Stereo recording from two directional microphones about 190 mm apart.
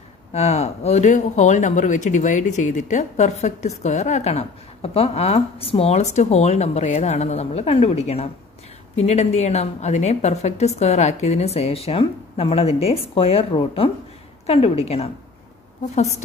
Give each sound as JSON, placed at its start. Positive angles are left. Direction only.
{"t": 0.3, "sound": "speech", "side_deg": 35}